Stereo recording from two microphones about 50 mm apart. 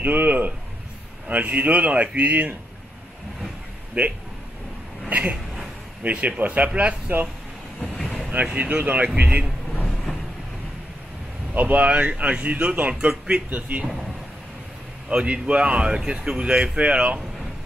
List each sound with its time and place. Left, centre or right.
0.0 s a sound: right
1.3 s speech: right
4.0 s speech: right
8.0 s boat: centre
8.5 s speech: right
11.5 s speech: right
15.0 s speech: right